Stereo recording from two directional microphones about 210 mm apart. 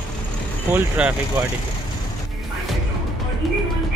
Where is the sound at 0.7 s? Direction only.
5° right (ahead or behind).